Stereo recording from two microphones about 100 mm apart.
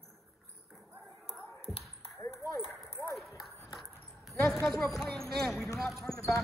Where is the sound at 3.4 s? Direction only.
35° left (ahead or behind).